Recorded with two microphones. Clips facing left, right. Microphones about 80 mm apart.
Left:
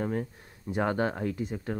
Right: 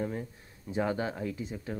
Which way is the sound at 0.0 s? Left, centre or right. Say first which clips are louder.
Left 4 dB; left.